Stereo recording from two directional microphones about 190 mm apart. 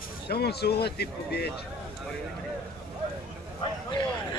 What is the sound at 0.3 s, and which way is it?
Speech, 55° left (ahead or behind).